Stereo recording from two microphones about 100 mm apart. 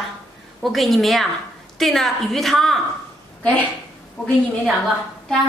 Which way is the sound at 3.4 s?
15° left (ahead or behind).